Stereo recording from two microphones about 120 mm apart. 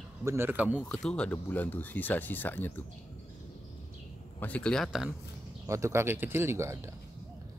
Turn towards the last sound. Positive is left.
turn(degrees=-20)  # may be behind; listen again after turning